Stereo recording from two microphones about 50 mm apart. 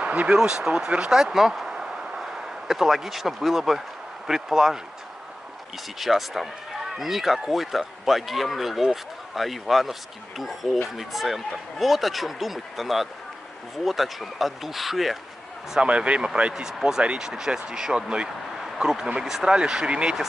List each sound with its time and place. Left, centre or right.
0.0 s a sound: right
0.4 s speech: centre
1.2 s speech: centre
5.9 s speech: centre
15.8 s speech: right
16.6 s speech: centre
17.0 s speech: right